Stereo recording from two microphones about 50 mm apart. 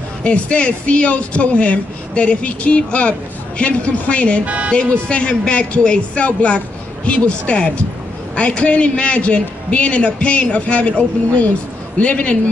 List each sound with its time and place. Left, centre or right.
0.2 s speech: left
4.5 s speech: right
5.0 s speech: left